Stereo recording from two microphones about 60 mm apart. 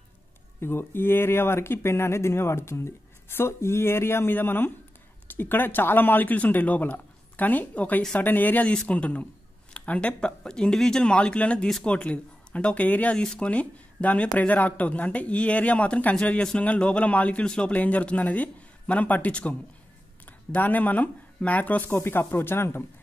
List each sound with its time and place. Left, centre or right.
0.6 s speech: left
4.3 s a man's voice: left
13.2 s a man's voice: centre; by 22.8 s left